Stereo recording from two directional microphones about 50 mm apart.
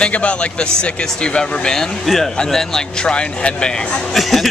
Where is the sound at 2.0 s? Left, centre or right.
Centre; by 4.0 s left.